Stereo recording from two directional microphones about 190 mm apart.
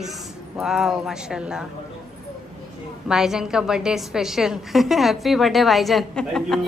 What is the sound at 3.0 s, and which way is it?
A woman's voice, centre (ahead or behind).